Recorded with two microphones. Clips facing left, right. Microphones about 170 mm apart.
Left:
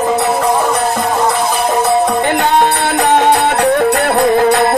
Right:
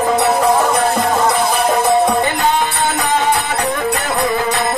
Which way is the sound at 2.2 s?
65° left (ahead or behind).